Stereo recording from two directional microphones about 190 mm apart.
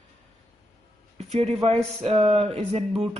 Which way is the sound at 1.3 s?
30° right (ahead or behind).